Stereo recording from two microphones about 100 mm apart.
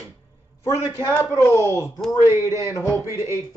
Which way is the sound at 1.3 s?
25° left (ahead or behind).